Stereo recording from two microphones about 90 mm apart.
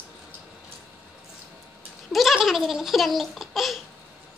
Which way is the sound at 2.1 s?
Centre (ahead or behind).